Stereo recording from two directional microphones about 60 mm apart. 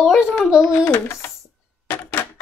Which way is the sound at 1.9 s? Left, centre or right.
Left.